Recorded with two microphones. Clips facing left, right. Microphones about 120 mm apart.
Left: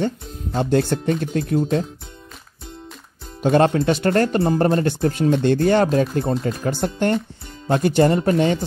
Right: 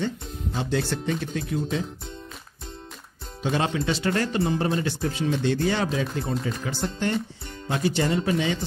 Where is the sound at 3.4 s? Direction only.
50° left (ahead or behind).